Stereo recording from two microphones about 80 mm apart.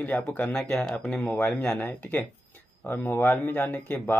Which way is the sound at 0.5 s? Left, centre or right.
Centre.